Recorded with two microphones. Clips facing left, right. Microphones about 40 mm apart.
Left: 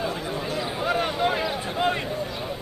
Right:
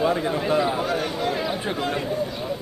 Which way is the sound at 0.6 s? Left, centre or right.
Centre.